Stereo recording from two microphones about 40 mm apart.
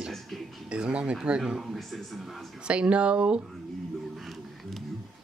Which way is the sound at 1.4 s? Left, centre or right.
Centre.